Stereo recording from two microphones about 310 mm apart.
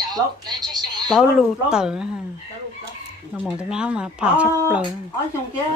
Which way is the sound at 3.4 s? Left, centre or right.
Centre.